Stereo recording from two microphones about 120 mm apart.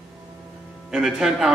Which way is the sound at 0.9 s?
5° right (ahead or behind).